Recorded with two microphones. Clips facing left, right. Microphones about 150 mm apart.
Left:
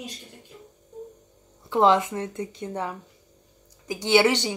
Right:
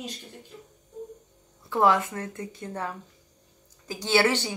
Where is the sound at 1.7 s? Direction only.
20° left (ahead or behind).